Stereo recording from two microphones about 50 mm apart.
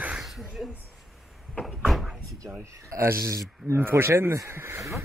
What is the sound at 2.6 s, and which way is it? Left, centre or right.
Speech, right.